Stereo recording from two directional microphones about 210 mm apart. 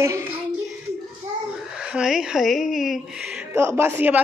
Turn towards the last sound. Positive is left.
turn(degrees=-10)  # may be behind; listen again after turning